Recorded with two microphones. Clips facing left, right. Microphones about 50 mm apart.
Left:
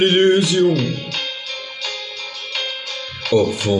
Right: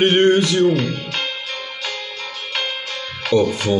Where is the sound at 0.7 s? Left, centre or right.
Right.